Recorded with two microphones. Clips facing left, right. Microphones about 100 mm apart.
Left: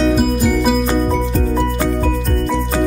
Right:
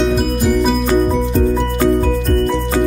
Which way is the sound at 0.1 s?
Centre (ahead or behind).